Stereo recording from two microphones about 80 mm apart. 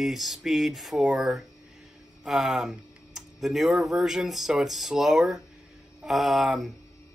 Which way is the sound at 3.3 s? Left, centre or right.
Centre.